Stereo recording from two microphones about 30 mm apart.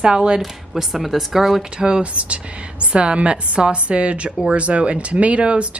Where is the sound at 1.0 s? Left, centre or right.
Centre.